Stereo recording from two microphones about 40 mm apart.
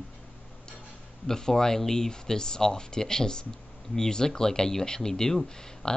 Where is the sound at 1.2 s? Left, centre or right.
Centre.